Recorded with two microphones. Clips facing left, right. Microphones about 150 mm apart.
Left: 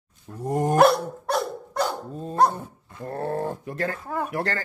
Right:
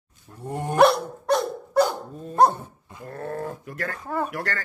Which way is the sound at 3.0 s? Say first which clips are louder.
Left 4 dB; 30° left (ahead or behind).